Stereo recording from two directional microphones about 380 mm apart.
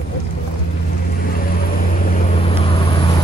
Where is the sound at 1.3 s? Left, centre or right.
Left.